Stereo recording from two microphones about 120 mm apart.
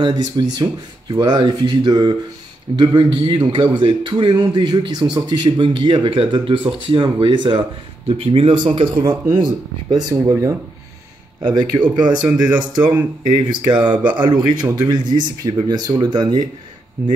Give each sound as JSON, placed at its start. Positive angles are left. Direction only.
{"t": 0.0, "sound": "speech", "side_deg": -40}
{"t": 8.1, "sound": "speech", "side_deg": -55}
{"t": 11.4, "sound": "speech", "side_deg": -40}